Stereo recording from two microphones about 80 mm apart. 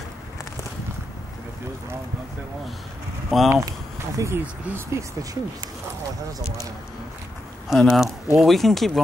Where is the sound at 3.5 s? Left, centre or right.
Right.